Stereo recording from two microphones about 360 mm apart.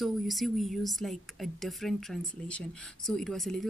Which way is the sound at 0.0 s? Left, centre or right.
Centre.